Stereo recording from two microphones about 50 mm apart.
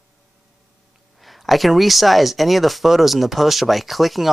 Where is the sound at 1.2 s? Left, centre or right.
Centre.